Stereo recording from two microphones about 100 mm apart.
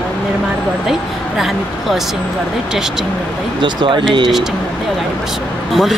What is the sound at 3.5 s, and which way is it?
Speech, 55° right (ahead or behind).